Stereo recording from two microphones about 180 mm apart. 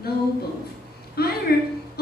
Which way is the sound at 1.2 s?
60° left (ahead or behind).